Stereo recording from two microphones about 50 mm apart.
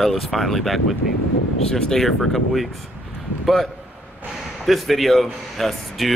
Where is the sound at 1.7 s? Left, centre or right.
Centre.